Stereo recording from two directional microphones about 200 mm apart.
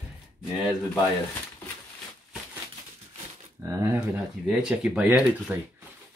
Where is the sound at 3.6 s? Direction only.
15° right (ahead or behind).